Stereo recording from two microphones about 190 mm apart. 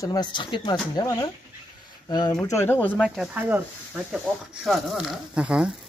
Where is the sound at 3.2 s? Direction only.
10° right (ahead or behind).